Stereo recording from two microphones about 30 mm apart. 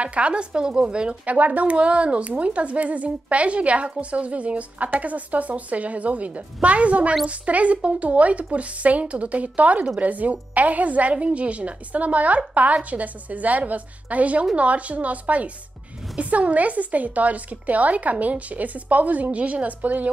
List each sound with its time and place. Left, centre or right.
0.0 s a woman's voice: right
1.2 s a woman's voice: right